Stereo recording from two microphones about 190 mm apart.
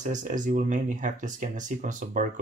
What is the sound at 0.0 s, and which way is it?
Speech, 40° right (ahead or behind).